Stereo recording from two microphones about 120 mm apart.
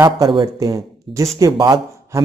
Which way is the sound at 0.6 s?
30° right (ahead or behind).